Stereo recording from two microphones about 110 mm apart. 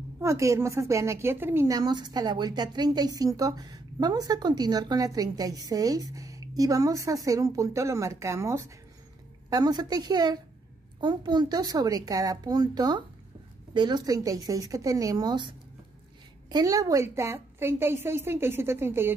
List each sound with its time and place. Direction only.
0.2 s a woman's voice: 25° right (ahead or behind)
1.7 s speech: 40° right (ahead or behind)
9.5 s a woman's voice: 40° right (ahead or behind); by 19.1 s 20° right (ahead or behind)